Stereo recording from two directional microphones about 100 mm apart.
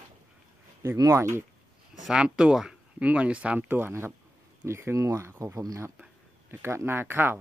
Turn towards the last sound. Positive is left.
turn(degrees=-20)  # may be behind; listen again after turning